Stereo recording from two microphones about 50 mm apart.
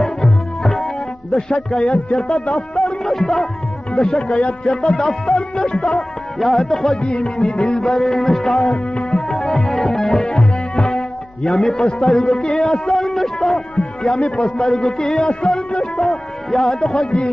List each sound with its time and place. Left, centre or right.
0.0 s music: centre
1.5 s speech: centre
2.1 s music: centre
3.9 s speech: centre
7.0 s speech: centre
8.5 s music: left
9.1 s music: centre
16.0 s music: centre